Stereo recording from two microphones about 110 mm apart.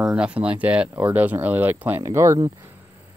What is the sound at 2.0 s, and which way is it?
Speech, 30° right (ahead or behind).